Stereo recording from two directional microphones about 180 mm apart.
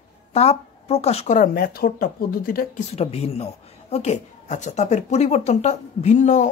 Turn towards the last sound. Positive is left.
turn(degrees=40)  # may be behind; listen again after turning